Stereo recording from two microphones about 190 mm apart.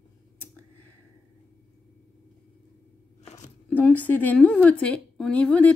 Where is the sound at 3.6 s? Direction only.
5° left (ahead or behind).